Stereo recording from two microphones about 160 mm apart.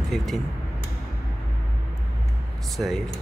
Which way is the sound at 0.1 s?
Centre (ahead or behind).